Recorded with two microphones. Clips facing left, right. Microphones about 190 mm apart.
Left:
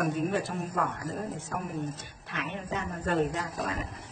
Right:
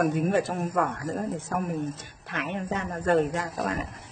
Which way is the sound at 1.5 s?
65° right (ahead or behind).